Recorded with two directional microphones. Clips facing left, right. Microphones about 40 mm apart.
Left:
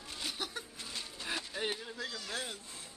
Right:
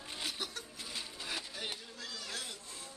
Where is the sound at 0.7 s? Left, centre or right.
Centre.